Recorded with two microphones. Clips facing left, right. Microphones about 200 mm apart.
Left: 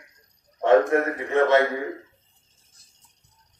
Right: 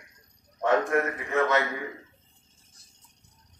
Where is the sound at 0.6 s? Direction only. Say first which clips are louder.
Left 6 dB; 30° left (ahead or behind).